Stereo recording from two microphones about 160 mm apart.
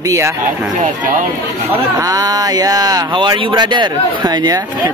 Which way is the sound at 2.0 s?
20° right (ahead or behind).